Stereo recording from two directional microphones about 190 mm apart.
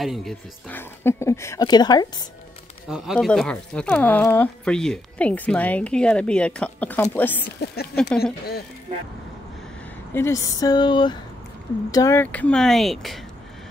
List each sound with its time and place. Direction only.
0.0 s speech: centre (ahead or behind); by 2.2 s 20° left (ahead or behind)
2.9 s speech: centre (ahead or behind)
7.6 s speech: 55° left (ahead or behind)
10.1 s speech: 15° left (ahead or behind)